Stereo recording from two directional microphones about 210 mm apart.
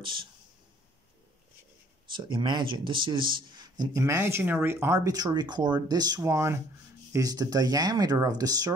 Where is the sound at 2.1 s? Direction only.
20° right (ahead or behind).